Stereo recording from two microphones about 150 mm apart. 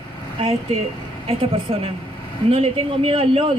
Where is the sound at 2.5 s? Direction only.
40° right (ahead or behind).